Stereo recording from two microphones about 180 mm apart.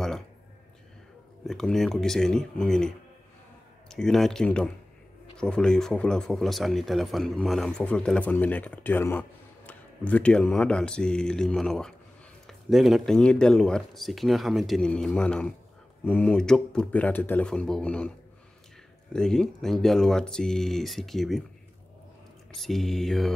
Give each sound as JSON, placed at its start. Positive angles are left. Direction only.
{"t": 1.4, "sound": "speech", "side_deg": 0}
{"t": 3.9, "sound": "speech", "side_deg": 0}
{"t": 19.1, "sound": "speech", "side_deg": 5}
{"t": 22.6, "sound": "speech", "side_deg": 0}